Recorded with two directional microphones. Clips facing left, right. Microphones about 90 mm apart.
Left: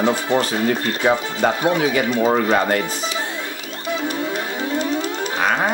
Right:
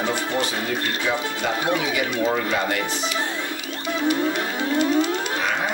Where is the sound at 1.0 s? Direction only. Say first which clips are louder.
Left 6 dB; 45° left (ahead or behind).